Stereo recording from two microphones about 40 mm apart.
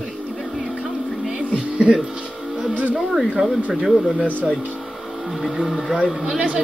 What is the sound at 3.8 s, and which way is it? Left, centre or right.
Speech, centre.